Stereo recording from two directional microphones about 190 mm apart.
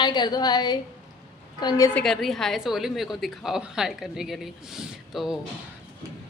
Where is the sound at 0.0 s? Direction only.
25° left (ahead or behind).